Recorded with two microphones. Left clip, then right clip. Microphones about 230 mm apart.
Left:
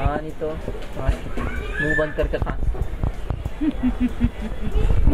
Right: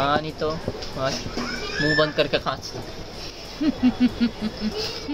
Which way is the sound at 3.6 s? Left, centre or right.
Right.